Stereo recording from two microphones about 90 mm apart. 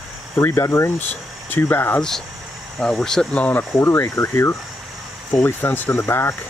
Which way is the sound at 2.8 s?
Centre (ahead or behind).